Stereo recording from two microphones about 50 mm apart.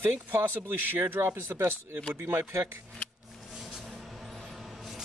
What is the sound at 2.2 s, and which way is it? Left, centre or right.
Speech, right.